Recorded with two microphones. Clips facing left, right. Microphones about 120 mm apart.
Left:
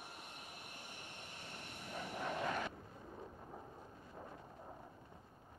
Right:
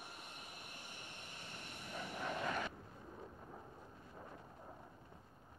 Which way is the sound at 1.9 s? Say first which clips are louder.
Left 1 dB; 25° left (ahead or behind).